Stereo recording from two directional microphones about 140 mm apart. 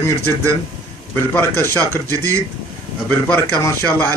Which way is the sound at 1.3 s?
15° left (ahead or behind).